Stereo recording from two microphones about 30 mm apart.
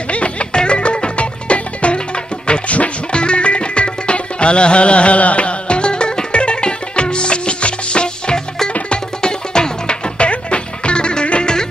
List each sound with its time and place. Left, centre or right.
0.1 s music: left
10.1 s music: left